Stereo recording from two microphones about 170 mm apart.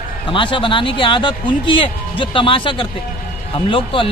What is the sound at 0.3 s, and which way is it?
Speech, 30° left (ahead or behind).